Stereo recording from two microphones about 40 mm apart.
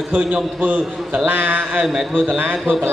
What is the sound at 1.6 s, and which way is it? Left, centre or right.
Speech, right.